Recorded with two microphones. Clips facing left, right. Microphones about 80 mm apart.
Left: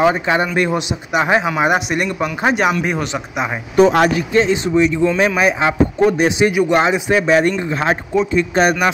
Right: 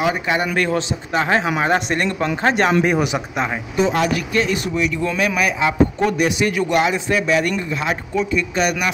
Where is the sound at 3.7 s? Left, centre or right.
Left.